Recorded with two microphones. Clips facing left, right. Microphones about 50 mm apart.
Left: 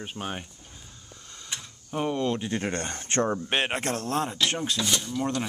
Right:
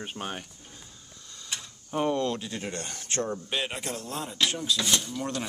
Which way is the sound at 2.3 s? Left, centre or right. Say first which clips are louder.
Left 5 dB; left.